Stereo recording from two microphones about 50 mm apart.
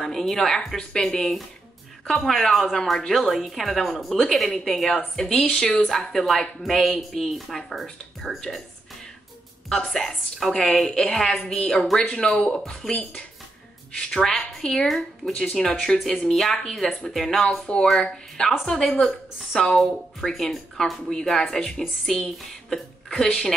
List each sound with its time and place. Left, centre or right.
0.0 s speech: centre
9.9 s speech: centre
18.7 s a woman's voice: centre